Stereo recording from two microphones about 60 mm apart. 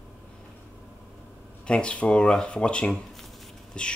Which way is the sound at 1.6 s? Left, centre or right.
Centre.